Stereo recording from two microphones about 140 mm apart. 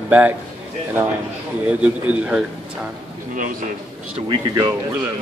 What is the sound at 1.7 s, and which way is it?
Speech, 10° right (ahead or behind).